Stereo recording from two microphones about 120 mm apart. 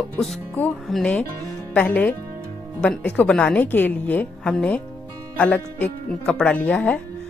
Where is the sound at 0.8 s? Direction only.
5° left (ahead or behind).